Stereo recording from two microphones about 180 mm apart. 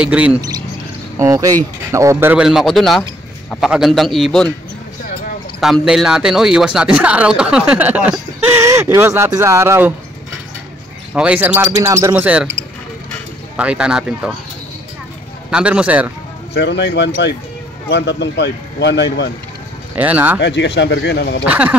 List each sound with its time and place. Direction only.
0.0 s speech: 5° right (ahead or behind)
1.1 s a man's voice: 15° right (ahead or behind); by 4.5 s centre (ahead or behind)
5.6 s speech: centre (ahead or behind)
11.1 s speech: 5° right (ahead or behind)
13.6 s a man's voice: 5° right (ahead or behind)
15.5 s speech: 5° right (ahead or behind)
16.5 s speech: 75° left (ahead or behind)
20.0 s speech: 10° right (ahead or behind)
20.3 s speech: 75° left (ahead or behind)
21.5 s speech: 10° right (ahead or behind)